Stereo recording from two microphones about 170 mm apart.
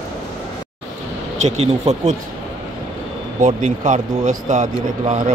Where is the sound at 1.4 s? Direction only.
40° right (ahead or behind).